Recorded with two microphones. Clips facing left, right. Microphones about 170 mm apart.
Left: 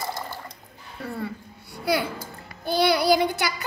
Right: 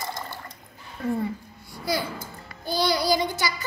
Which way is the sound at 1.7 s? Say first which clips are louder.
Left 3 dB; 65° left (ahead or behind).